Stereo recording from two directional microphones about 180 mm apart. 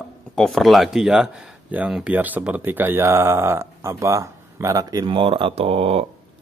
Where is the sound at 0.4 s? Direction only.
Centre (ahead or behind).